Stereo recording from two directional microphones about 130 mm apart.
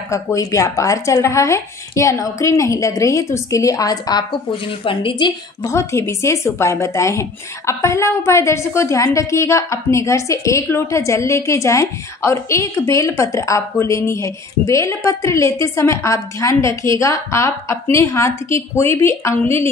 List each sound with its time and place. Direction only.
0.1 s a woman's voice: 25° left (ahead or behind)